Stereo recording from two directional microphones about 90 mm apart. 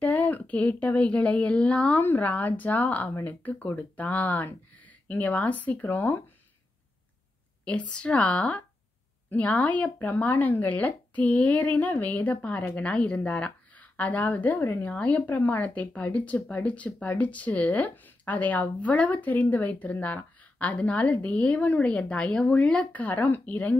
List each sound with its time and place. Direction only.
0.0 s speech: 20° left (ahead or behind)
7.6 s speech: 15° left (ahead or behind)